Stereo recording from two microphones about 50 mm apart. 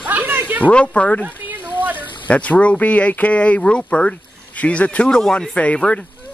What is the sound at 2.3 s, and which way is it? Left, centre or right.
Speech, left.